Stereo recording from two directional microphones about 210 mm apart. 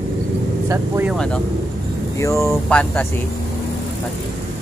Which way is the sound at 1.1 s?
5° left (ahead or behind).